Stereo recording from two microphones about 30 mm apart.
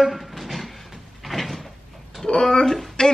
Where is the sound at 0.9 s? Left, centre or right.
Centre.